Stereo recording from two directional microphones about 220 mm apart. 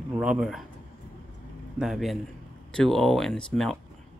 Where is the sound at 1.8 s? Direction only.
Centre (ahead or behind).